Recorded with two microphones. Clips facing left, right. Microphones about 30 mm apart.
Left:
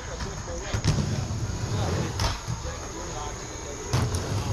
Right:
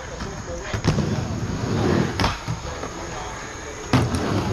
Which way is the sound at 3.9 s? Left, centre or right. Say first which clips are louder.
Right 10 dB; right.